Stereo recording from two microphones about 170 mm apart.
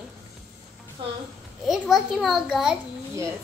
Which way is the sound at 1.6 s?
Centre (ahead or behind).